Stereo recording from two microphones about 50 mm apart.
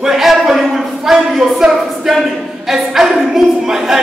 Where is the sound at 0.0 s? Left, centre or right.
Centre.